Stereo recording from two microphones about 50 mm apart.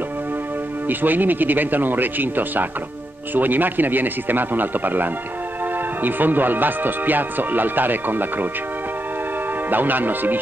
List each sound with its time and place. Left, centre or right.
0.8 s speech: right
9.7 s speech: right